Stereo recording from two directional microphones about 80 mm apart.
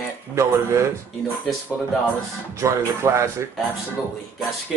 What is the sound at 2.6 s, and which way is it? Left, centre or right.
Music, right.